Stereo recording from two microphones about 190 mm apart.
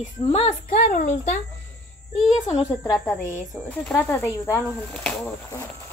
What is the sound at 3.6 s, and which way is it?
Speech, 5° left (ahead or behind).